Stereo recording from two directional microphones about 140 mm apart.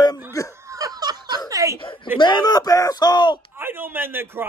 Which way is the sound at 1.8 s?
40° left (ahead or behind).